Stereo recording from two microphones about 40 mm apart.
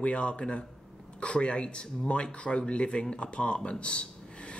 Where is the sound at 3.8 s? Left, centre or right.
Left.